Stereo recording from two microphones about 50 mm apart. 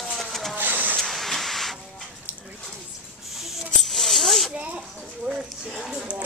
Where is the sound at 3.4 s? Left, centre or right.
Centre.